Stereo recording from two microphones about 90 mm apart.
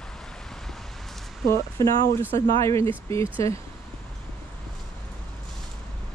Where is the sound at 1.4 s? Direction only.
30° left (ahead or behind).